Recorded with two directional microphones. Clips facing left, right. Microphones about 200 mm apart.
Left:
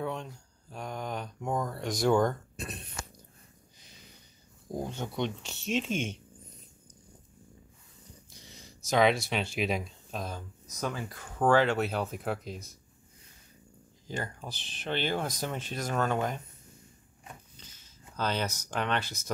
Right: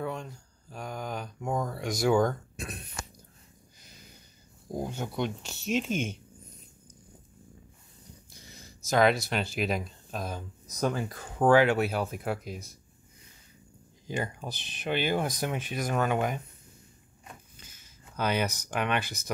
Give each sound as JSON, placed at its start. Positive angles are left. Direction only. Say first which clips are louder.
{"t": 0.0, "sound": "speech", "louder": "even", "side_deg": 0}
{"t": 3.8, "sound": "a sound", "louder": "right 2 dB", "side_deg": -5}
{"t": 4.6, "sound": "speech", "louder": "right 1 dB", "side_deg": -5}
{"t": 8.3, "sound": "speech", "louder": "right 1 dB", "side_deg": -5}
{"t": 10.8, "sound": "speech", "louder": "right 5 dB", "side_deg": -40}
{"t": 11.3, "sound": "speech", "louder": "right 3 dB", "side_deg": -10}
{"t": 14.0, "sound": "speech", "louder": "right 4 dB", "side_deg": -15}
{"t": 17.6, "sound": "a sound", "louder": "even", "side_deg": -10}
{"t": 18.7, "sound": "speech", "louder": "right 2 dB", "side_deg": -10}